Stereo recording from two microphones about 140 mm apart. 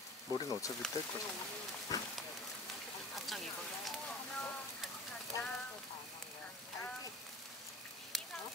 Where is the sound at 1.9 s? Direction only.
25° left (ahead or behind).